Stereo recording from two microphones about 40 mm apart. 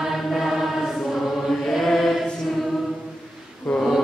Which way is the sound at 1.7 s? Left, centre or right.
Centre.